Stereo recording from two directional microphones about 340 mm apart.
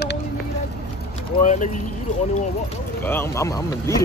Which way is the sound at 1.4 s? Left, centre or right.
Left.